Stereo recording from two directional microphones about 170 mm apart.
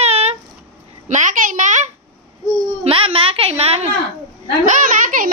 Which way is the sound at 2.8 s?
35° right (ahead or behind).